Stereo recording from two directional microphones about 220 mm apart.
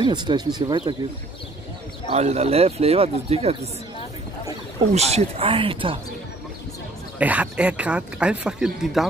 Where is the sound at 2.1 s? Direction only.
30° right (ahead or behind).